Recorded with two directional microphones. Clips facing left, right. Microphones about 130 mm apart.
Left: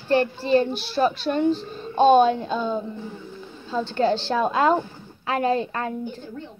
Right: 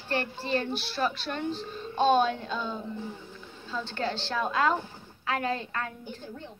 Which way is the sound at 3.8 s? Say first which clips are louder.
Left 12 dB; 20° left (ahead or behind).